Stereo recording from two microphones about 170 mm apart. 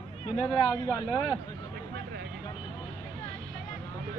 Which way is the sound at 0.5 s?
25° left (ahead or behind).